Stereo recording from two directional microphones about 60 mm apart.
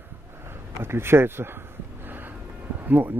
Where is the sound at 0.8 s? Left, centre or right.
Right.